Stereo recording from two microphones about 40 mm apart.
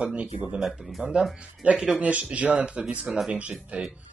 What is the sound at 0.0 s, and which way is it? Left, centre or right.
Speech, right.